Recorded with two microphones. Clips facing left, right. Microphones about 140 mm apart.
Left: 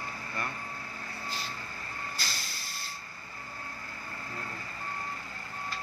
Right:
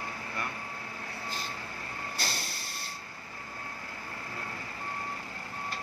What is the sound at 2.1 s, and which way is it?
Vehicle, 60° right (ahead or behind).